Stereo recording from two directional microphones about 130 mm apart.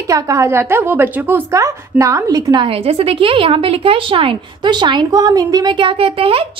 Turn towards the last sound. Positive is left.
turn(degrees=-45)  # may be behind; listen again after turning